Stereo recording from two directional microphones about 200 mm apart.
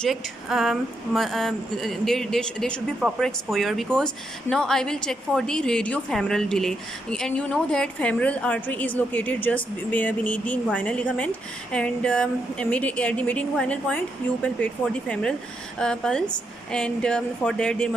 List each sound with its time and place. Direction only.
0.0 s a woman's voice: centre (ahead or behind)